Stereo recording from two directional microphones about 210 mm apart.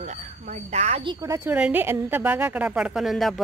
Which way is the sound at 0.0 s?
35° right (ahead or behind).